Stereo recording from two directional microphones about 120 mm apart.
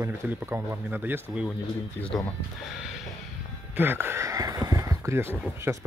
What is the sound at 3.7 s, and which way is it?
Speech, 15° right (ahead or behind).